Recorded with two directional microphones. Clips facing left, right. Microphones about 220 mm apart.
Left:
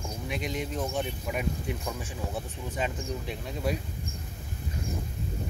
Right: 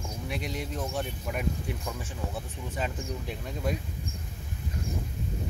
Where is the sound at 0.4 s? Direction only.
35° right (ahead or behind).